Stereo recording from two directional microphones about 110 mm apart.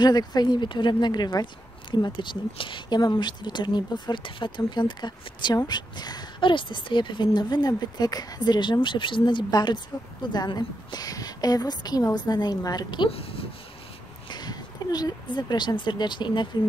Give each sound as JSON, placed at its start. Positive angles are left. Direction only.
{"t": 0.0, "sound": "a woman's voice", "side_deg": 40}
{"t": 13.1, "sound": "speech", "side_deg": 60}
{"t": 14.3, "sound": "speech", "side_deg": 40}